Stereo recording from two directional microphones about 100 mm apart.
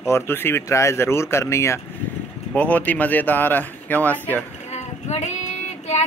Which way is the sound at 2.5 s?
15° left (ahead or behind).